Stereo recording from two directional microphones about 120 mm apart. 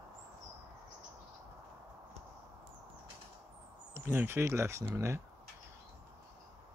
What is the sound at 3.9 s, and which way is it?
Speech, 20° right (ahead or behind).